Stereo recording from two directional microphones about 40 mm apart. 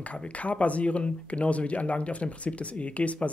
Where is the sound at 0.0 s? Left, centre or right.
Left.